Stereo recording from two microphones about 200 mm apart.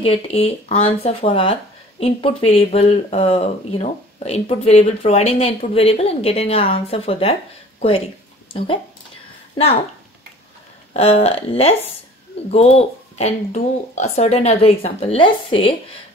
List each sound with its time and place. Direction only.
0.0 s speech: 30° left (ahead or behind)
10.9 s speech: 30° left (ahead or behind)